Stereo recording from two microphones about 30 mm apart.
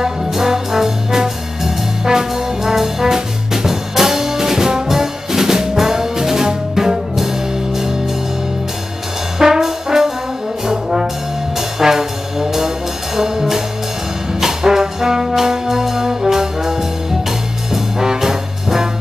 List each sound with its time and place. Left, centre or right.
0.3 s trombone: centre
4.8 s brass instrument: centre
9.4 s brass instrument: centre
14.4 s trombone: centre
16.1 s brass instrument: centre